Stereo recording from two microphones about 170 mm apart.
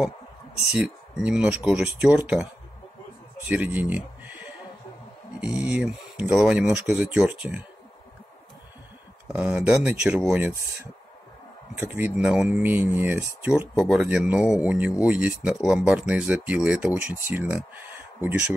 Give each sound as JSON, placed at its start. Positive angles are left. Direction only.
{"t": 0.7, "sound": "speech", "side_deg": -5}
{"t": 9.3, "sound": "speech", "side_deg": -10}